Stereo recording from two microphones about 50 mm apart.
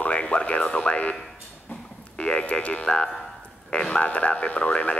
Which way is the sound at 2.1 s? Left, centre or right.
Left.